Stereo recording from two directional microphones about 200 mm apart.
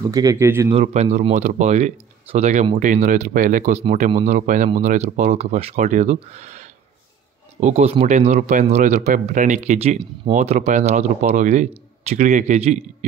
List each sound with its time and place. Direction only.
0.1 s speech: 15° right (ahead or behind)
0.7 s speech: 30° right (ahead or behind)